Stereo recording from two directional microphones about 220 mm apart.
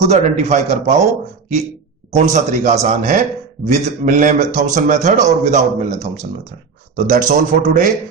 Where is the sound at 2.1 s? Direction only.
35° right (ahead or behind).